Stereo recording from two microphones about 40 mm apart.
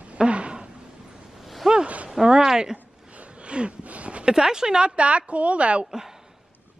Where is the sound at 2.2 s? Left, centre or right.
Centre.